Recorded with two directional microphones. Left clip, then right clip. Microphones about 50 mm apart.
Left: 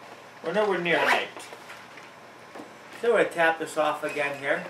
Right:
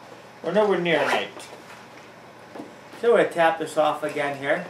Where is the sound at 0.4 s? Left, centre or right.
Left.